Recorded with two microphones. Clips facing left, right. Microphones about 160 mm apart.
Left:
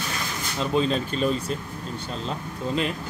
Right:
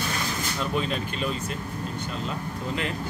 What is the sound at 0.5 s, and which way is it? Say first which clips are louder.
Speech: left 6 dB; 30° left (ahead or behind).